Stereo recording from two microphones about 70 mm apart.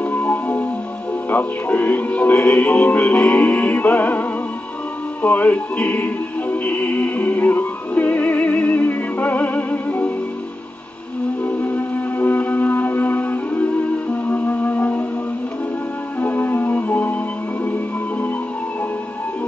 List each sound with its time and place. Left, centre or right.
0.0 s music: left
1.3 s speech: left
5.2 s music: left
11.4 s music: left
16.2 s music: left